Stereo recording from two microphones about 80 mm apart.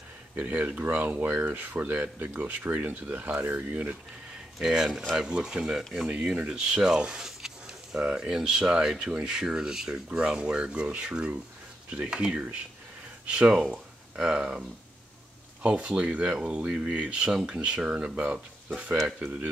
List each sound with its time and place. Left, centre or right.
0.4 s speech: centre
4.6 s speech: centre
15.6 s speech: centre